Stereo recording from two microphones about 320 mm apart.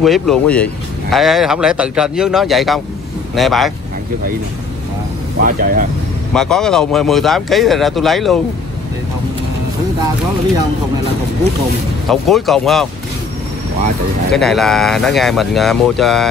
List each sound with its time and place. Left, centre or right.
0.0 s speech: centre
5.4 s speech: right
6.3 s speech: centre
12.1 s speech: centre
14.3 s speech: centre